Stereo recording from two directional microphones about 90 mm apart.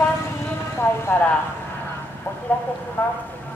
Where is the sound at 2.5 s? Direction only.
15° left (ahead or behind).